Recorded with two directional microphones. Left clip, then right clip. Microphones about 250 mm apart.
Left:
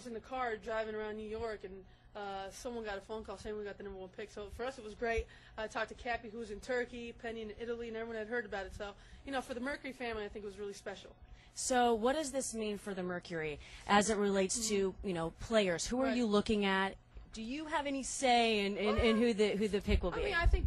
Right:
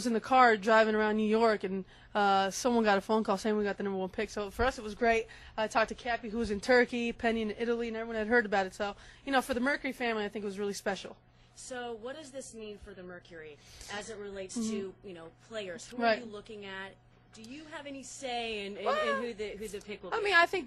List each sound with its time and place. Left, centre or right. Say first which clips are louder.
0.1 s speech: right 15 dB; right
11.6 s a woman's voice: left 9 dB; left
20.1 s speech: right 12 dB; right